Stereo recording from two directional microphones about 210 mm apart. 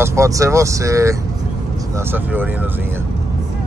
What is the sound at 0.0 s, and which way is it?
Speech, 15° right (ahead or behind).